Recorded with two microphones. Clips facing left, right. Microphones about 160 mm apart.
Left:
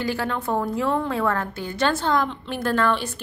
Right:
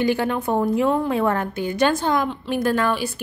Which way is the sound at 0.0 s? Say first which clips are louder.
Right 5 dB; 20° right (ahead or behind).